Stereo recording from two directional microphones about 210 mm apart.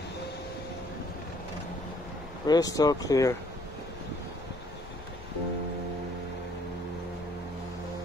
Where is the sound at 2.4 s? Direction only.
15° left (ahead or behind).